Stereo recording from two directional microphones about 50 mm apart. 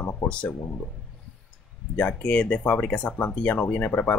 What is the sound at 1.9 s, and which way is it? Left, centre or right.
Speech, left.